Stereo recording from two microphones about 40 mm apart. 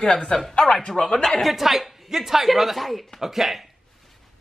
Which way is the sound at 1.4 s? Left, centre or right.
Centre.